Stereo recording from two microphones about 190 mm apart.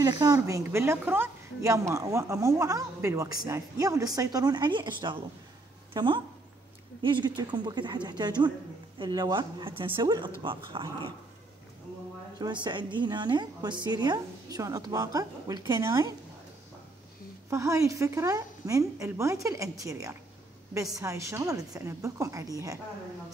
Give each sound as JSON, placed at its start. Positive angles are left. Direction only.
{"t": 0.0, "sound": "a woman's voice", "side_deg": -20}
{"t": 12.4, "sound": "a woman's voice", "side_deg": -20}
{"t": 17.5, "sound": "a woman's voice", "side_deg": -15}